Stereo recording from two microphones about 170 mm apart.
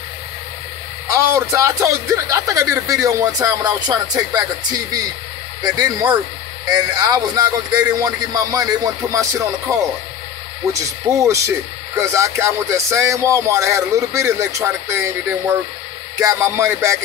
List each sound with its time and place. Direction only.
1.0 s a man's voice: 15° right (ahead or behind)